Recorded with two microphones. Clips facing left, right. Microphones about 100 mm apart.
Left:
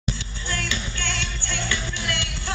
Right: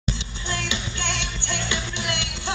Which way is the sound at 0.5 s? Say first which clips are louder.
Even; 20° right (ahead or behind).